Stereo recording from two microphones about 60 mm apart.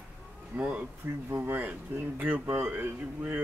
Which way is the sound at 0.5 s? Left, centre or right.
Right.